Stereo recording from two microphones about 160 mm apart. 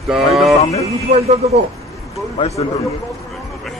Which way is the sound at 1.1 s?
50° right (ahead or behind).